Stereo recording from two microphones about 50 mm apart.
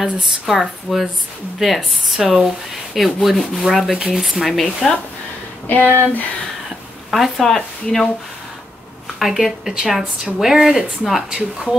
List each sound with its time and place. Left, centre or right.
0.2 s rub: centre
5.7 s a sound: left
7.1 s rub: centre
9.2 s rub: centre
10.4 s speech: centre